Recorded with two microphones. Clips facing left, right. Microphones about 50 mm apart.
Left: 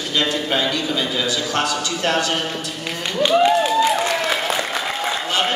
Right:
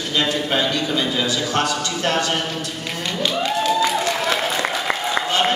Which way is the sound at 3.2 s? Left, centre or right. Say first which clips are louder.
Left 8 dB; centre.